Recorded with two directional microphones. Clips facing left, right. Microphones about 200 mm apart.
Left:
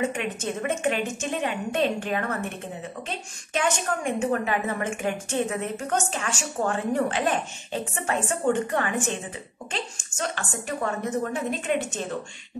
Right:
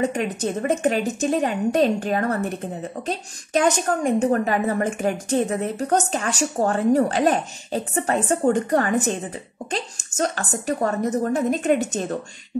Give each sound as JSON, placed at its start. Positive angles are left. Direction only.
{"t": 0.0, "sound": "a woman's voice", "side_deg": -40}